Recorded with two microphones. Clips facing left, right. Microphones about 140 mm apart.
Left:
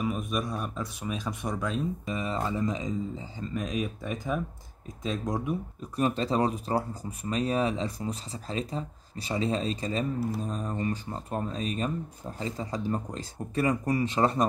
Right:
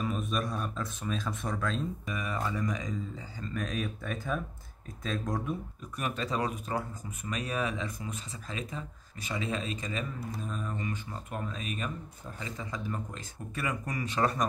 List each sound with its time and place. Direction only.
0.0 s speech: 10° left (ahead or behind)
2.0 s speech: 25° left (ahead or behind)
5.9 s speech: 30° left (ahead or behind)